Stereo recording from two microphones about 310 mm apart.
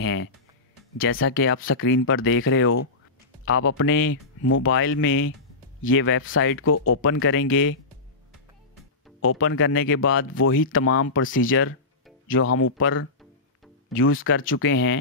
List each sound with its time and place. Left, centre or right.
0.0 s music: left
0.9 s speech: left
9.2 s speech: left